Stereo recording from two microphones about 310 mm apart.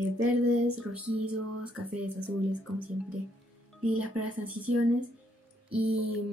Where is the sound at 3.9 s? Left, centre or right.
Right.